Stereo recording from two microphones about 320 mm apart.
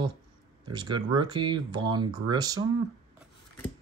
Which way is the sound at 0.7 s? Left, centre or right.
Centre.